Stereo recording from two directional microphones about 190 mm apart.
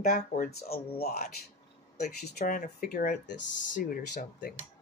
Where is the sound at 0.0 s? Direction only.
50° left (ahead or behind).